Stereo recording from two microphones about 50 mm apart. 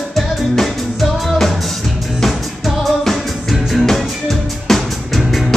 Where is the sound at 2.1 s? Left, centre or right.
Centre.